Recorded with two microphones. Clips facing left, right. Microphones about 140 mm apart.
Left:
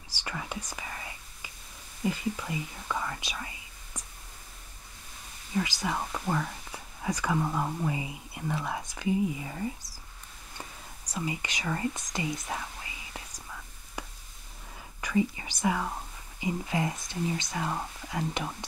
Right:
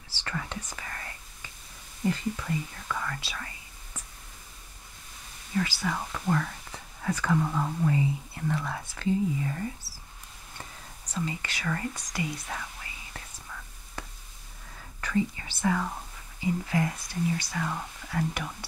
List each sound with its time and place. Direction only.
0.1 s whispering: 15° left (ahead or behind)
2.0 s speech: 10° left (ahead or behind)
5.5 s speech: 15° left (ahead or behind)
11.1 s speech: 15° left (ahead or behind)
13.1 s whispering: 15° left (ahead or behind)
15.0 s speech: 15° left (ahead or behind)